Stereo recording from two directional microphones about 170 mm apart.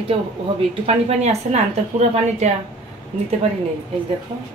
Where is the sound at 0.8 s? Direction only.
40° right (ahead or behind).